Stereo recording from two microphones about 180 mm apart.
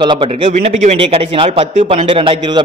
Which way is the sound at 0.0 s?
25° right (ahead or behind).